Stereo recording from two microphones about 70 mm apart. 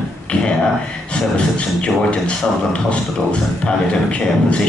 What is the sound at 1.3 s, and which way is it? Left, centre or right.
Speech, centre.